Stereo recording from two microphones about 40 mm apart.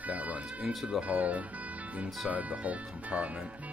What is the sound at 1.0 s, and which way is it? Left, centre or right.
Speech, right.